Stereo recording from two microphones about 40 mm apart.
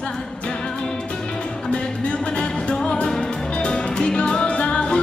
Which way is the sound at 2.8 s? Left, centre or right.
Left.